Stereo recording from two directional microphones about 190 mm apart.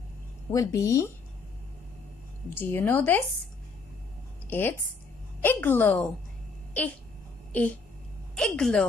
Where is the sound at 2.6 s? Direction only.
10° left (ahead or behind).